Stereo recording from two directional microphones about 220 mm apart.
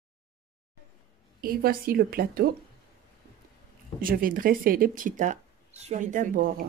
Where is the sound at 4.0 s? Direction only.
40° right (ahead or behind).